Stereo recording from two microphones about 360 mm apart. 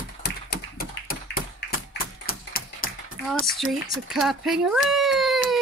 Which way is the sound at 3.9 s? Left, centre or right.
Centre.